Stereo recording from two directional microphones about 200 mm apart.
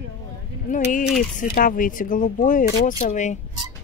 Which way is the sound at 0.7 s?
40° left (ahead or behind).